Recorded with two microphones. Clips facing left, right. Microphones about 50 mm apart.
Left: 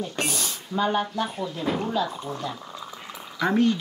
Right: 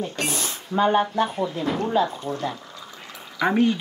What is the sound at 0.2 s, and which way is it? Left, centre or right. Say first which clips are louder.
Speech: right 1 dB; right.